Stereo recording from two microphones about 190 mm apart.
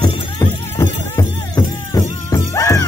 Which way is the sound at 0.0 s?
15° left (ahead or behind).